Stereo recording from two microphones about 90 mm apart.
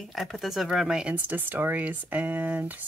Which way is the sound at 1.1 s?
20° right (ahead or behind).